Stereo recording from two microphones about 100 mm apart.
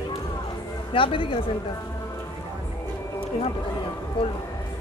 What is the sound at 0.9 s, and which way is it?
Speech, 60° left (ahead or behind).